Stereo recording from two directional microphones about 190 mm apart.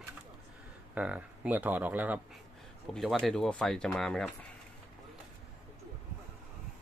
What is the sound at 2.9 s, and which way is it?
Speech, centre (ahead or behind).